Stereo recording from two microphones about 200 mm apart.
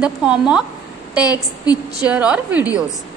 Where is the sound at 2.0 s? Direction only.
5° right (ahead or behind).